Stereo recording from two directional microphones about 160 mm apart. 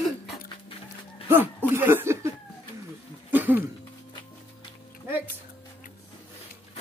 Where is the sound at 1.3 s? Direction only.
15° right (ahead or behind).